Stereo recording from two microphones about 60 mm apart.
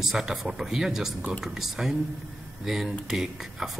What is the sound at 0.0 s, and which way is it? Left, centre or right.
Speech, centre.